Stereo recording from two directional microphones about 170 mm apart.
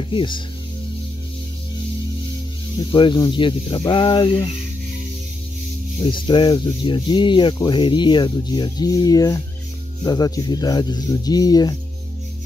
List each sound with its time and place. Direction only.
0.1 s speech: 30° left (ahead or behind)
2.9 s speech: 25° left (ahead or behind)
5.9 s speech: 25° left (ahead or behind)